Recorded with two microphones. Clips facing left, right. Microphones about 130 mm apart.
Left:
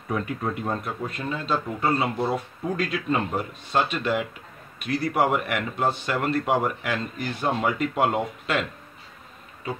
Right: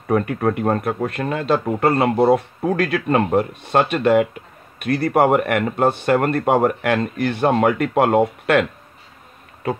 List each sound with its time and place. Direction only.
0.1 s speech: 55° right (ahead or behind)